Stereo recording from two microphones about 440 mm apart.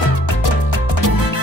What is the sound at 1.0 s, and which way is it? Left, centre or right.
Music, left.